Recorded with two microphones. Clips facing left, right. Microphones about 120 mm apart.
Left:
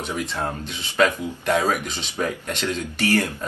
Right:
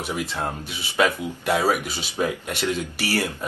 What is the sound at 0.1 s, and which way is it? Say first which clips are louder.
Speech: left 1 dB; 10° right (ahead or behind).